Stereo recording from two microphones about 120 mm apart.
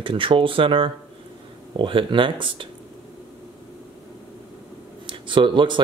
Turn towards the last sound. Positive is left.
turn(degrees=-40)  # may be behind; listen again after turning